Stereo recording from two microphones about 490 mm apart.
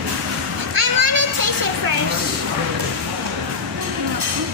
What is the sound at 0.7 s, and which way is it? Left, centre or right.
Children playing, right.